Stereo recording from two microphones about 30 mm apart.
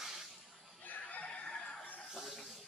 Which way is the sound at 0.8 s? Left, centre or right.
Left.